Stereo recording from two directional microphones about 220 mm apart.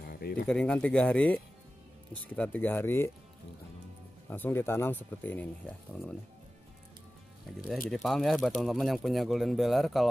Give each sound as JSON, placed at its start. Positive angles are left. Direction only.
{"t": 0.0, "sound": "a sound", "side_deg": 45}
{"t": 0.5, "sound": "speech", "side_deg": 5}
{"t": 4.3, "sound": "speech", "side_deg": 10}
{"t": 7.9, "sound": "speech", "side_deg": 0}